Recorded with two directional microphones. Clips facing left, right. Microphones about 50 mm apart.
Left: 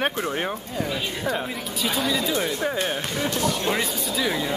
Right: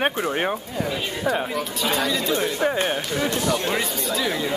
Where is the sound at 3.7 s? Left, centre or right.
Centre.